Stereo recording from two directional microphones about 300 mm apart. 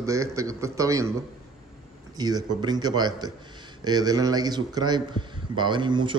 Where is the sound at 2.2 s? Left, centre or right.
Centre.